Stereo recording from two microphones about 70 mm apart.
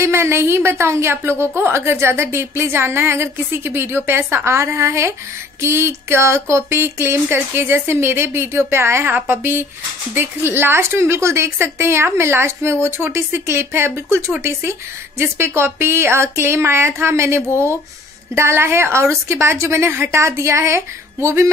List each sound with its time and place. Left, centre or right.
0.0 s a woman's voice: right